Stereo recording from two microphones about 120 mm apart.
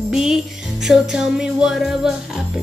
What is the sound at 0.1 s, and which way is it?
Music, 5° right (ahead or behind).